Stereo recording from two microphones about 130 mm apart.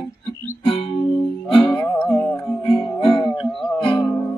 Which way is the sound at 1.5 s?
40° left (ahead or behind).